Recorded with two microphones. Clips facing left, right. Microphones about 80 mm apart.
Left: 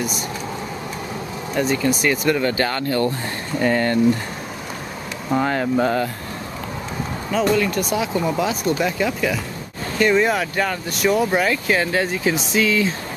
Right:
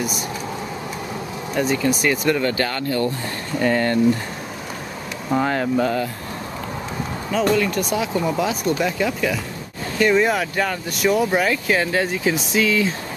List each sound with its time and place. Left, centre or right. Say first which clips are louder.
1.5 s speech: even; centre
2.5 s speech: left 2 dB; left
3.5 s speech: even; centre
5.3 s speech: even; centre
5.8 s speech: left 3 dB; left
7.5 s speech: even; centre